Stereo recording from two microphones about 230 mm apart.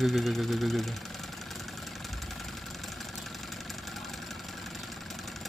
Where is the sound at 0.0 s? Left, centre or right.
Centre.